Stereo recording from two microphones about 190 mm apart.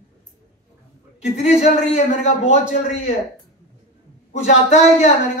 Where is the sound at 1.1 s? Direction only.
35° left (ahead or behind).